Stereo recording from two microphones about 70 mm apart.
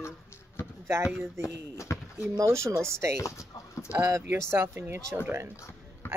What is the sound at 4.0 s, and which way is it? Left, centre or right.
Speech, right.